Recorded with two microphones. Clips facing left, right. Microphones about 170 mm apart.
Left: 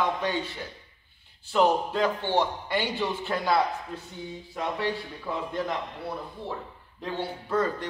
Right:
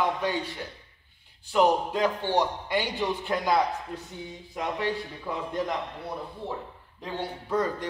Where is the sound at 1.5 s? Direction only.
15° right (ahead or behind).